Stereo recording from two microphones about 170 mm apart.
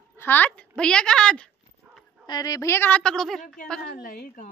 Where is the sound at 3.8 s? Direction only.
60° left (ahead or behind).